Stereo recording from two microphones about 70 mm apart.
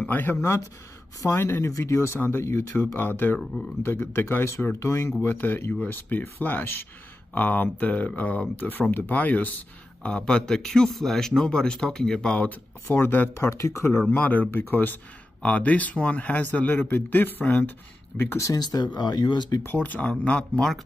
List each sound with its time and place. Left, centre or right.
0.1 s speech: left
2.1 s speech: left
5.2 s a man's voice: left; by 12.4 s centre
12.9 s speech: left
14.1 s speech: left
18.6 s speech: left
18.9 s speech: left
19.6 s speech: left